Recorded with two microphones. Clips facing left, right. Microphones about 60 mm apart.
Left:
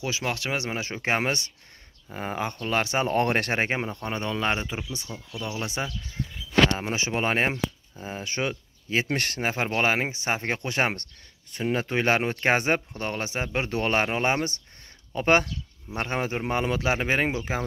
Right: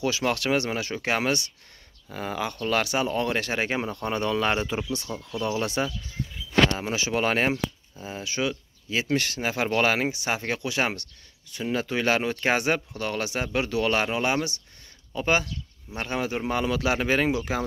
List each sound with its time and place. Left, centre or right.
0.0 s a man's voice: centre
3.1 s speech: left
3.5 s speech: left
3.8 s speech: centre
5.1 s speech: centre
5.6 s a man's voice: centre
8.0 s speech: left
9.7 s speech: left
15.9 s a man's voice: left